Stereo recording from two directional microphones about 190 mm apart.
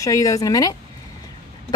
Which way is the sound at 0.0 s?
15° left (ahead or behind).